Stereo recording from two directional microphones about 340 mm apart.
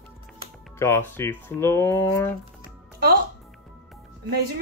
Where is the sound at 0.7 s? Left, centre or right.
Centre.